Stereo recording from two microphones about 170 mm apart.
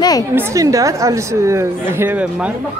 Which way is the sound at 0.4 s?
20° right (ahead or behind).